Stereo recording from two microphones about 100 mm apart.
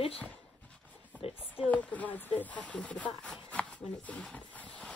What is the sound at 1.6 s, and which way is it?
Speech, 15° left (ahead or behind).